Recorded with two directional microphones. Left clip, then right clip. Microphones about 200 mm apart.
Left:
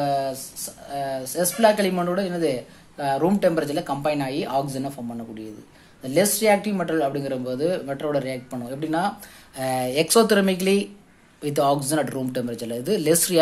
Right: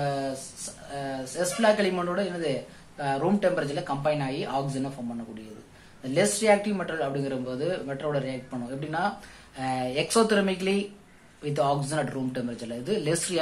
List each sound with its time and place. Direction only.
0.0 s a sound: 45° left (ahead or behind)
0.9 s speech: 45° left (ahead or behind)
6.1 s speech: 45° left (ahead or behind)